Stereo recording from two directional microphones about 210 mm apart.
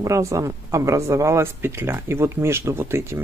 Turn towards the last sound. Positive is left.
turn(degrees=-10)  # may be behind; listen again after turning